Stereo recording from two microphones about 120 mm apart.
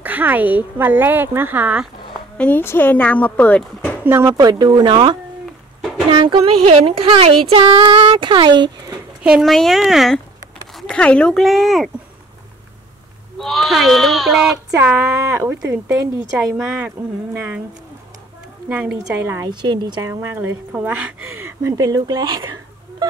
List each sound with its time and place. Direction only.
0.0 s speech: 15° right (ahead or behind)
2.3 s speech: 15° left (ahead or behind)
4.0 s speech: 20° right (ahead or behind)
4.4 s speech: 35° right (ahead or behind)
6.7 s speech: 55° right (ahead or behind)
7.6 s speech: 45° right (ahead or behind)
9.2 s speech: 5° right (ahead or behind)
13.4 s speech: centre (ahead or behind)
14.8 s a woman's voice: 15° right (ahead or behind)
16.3 s speech: 5° right (ahead or behind)
18.7 s speech: 10° right (ahead or behind)
19.2 s a woman's voice: 25° right (ahead or behind)
19.5 s a woman's voice: 40° right (ahead or behind); by 21.1 s 15° right (ahead or behind)
21.6 s speech: 30° right (ahead or behind)